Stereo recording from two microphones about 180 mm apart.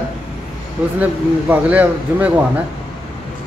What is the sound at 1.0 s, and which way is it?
A man's voice, 10° right (ahead or behind).